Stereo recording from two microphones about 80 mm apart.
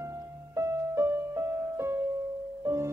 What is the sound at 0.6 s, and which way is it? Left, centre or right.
Music, right.